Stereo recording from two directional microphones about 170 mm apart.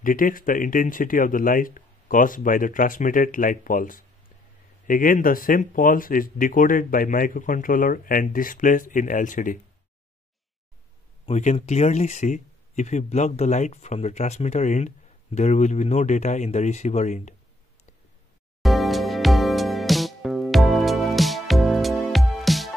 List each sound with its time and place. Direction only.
0.0 s speech: 55° left (ahead or behind)
11.2 s speech: 40° left (ahead or behind)
18.6 s music: centre (ahead or behind)